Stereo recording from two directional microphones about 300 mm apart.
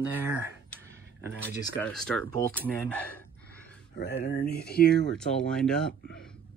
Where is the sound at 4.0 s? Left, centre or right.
Left.